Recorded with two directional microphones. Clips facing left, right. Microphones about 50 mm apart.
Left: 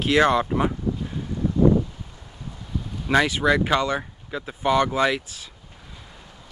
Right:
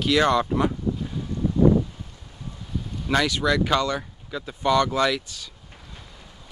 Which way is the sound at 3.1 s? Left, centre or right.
Centre.